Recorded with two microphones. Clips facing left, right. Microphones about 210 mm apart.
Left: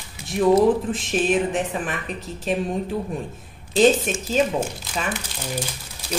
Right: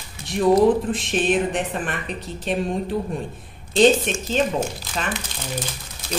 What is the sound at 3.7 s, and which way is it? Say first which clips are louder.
Speech: right 1 dB; centre (ahead or behind).